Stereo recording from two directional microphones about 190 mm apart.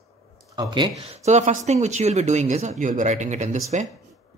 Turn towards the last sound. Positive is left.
turn(degrees=-40)  # may be behind; listen again after turning